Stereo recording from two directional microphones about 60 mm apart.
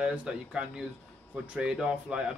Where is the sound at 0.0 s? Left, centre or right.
Centre.